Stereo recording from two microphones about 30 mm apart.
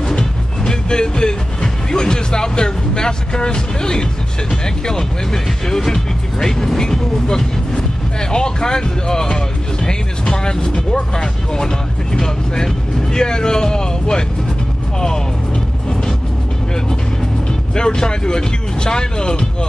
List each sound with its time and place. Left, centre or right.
0.7 s speech: left
5.8 s speech: centre; by 14.2 s left
15.0 s vehicle: left
17.5 s speech: left